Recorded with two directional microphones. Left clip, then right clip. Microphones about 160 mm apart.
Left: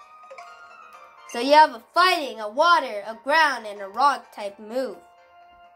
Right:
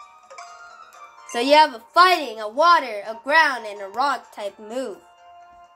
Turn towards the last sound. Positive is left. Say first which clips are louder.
# left 1 dB
turn(degrees=0)  # may be behind; listen again after turning